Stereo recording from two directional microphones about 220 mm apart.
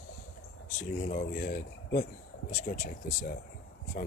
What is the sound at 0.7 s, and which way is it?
Speech, 35° left (ahead or behind).